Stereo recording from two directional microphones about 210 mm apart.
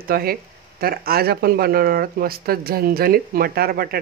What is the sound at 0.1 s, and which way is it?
Speech, 45° right (ahead or behind).